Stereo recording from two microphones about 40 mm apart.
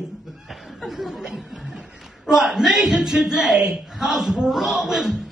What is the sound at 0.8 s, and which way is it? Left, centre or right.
Speech, centre.